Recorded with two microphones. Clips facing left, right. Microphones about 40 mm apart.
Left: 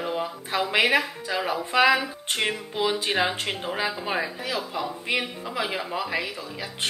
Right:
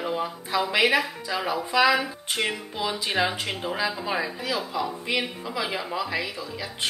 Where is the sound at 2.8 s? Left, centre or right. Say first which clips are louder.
Left 1 dB; left.